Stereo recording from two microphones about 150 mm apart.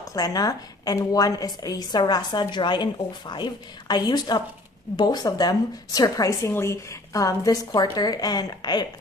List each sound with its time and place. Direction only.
0.1 s a woman's voice: 25° left (ahead or behind)